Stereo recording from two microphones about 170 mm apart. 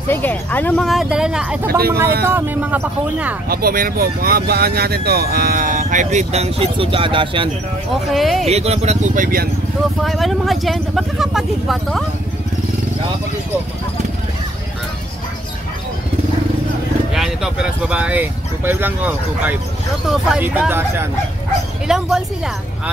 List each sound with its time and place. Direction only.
0.1 s speech: 10° left (ahead or behind); by 3.3 s 10° right (ahead or behind)
3.4 s speech: 60° right (ahead or behind); by 7.4 s 30° right (ahead or behind)
8.1 s speech: centre (ahead or behind)
8.5 s speech: 40° right (ahead or behind); by 9.5 s 55° right (ahead or behind)
10.0 s speech: centre (ahead or behind)
17.1 s speech: 5° right (ahead or behind)
21.8 s speech: 5° right (ahead or behind)